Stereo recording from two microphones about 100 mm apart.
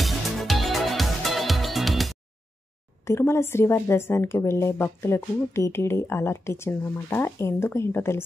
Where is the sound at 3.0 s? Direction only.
25° left (ahead or behind).